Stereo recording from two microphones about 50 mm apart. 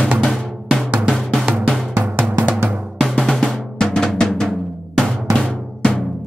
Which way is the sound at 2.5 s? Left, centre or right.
Right.